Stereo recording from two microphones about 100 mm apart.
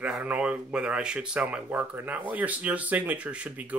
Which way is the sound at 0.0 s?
10° right (ahead or behind).